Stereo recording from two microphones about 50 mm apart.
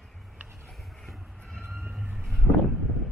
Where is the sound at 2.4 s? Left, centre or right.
Right.